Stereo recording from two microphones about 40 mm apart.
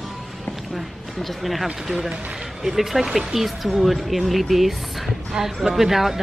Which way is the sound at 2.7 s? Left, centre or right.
Centre.